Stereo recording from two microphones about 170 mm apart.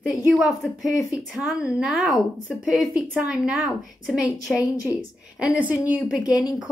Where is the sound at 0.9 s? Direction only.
20° left (ahead or behind).